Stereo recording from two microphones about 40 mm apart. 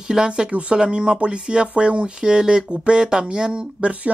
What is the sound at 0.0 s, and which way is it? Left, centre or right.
Speech, centre.